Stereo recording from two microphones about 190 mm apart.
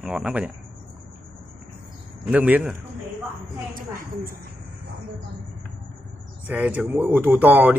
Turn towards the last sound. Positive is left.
turn(degrees=-10)  # may be behind; listen again after turning